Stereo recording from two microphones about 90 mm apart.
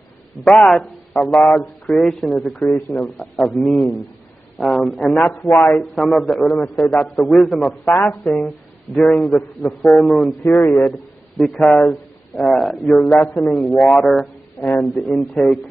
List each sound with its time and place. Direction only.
0.7 s a man's voice: centre (ahead or behind)
7.9 s speech: 25° left (ahead or behind)
8.9 s a man's voice: 5° left (ahead or behind)
13.2 s speech: 20° left (ahead or behind)
13.7 s a man's voice: centre (ahead or behind)